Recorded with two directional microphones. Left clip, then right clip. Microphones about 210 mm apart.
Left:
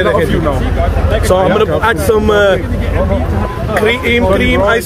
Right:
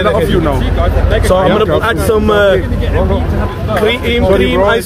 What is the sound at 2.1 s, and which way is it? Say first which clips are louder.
Speech: right 1 dB; 15° left (ahead or behind).